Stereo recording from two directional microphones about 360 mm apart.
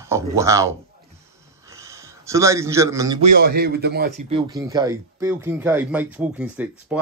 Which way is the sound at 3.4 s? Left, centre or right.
Right.